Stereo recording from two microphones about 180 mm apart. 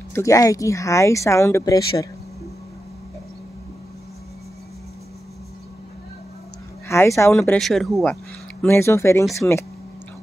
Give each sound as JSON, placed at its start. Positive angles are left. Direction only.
{"t": 0.1, "sound": "speech", "side_deg": 15}
{"t": 6.9, "sound": "speech", "side_deg": 15}
{"t": 7.5, "sound": "speech", "side_deg": 0}
{"t": 8.6, "sound": "speech", "side_deg": 15}